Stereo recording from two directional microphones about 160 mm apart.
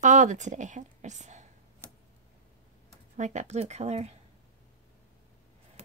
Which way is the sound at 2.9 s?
50° right (ahead or behind).